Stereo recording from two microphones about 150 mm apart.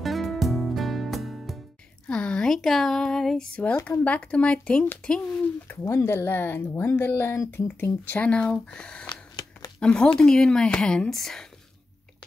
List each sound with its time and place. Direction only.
0.0 s music: centre (ahead or behind)
2.0 s speech: 5° left (ahead or behind)
5.7 s speech: 15° left (ahead or behind)
9.0 s a sound: 25° left (ahead or behind)
9.8 s speech: 5° left (ahead or behind)